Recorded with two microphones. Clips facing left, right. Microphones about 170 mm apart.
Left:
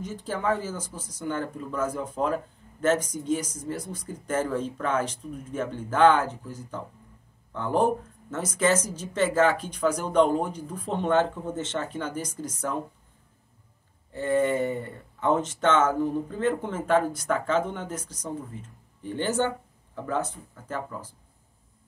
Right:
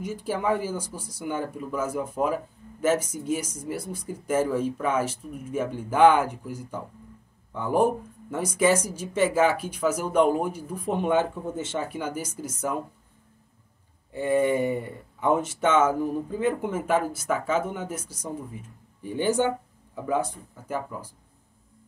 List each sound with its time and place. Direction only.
0.0 s speech: 10° right (ahead or behind)
14.1 s speech: 15° right (ahead or behind)